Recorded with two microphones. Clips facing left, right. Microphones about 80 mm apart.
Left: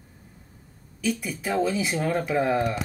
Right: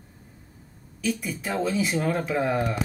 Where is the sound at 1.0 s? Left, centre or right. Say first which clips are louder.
Even; centre.